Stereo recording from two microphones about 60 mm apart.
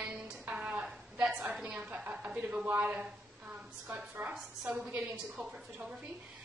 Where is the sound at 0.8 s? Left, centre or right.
Centre.